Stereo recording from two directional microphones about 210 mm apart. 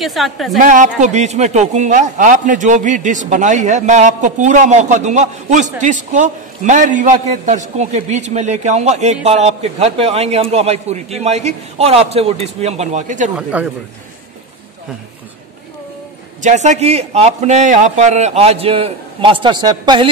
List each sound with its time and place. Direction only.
0.0 s a woman's voice: centre (ahead or behind)
0.6 s speech: 35° right (ahead or behind)
13.4 s speech: 5° right (ahead or behind)
16.3 s speech: 35° right (ahead or behind)